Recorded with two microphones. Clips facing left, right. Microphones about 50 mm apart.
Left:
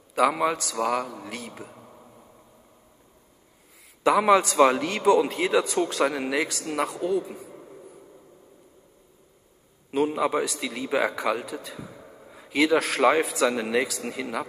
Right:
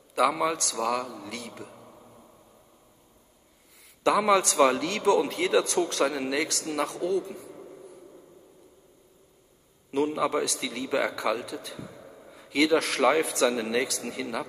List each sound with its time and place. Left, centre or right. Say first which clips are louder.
0.1 s a man's voice: left 2 dB; left
4.0 s a man's voice: left 3 dB; centre
7.1 s a sound: left 2 dB; centre
9.8 s a man's voice: left 2 dB; centre